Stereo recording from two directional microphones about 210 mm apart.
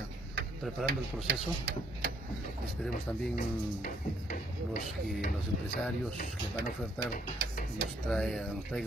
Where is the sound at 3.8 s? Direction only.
40° left (ahead or behind).